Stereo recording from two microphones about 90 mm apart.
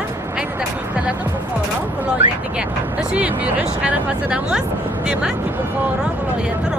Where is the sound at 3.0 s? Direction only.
15° right (ahead or behind).